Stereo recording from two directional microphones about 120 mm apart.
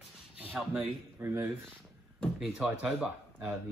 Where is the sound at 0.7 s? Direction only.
20° right (ahead or behind).